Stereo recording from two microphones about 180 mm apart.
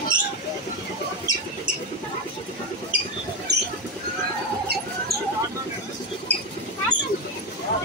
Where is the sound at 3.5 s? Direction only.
65° right (ahead or behind).